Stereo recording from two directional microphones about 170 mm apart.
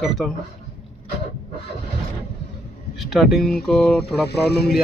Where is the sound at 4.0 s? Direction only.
75° left (ahead or behind).